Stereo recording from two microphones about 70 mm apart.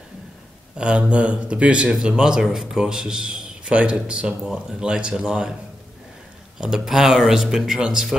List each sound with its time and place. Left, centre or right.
0.7 s speech: centre
6.6 s speech: centre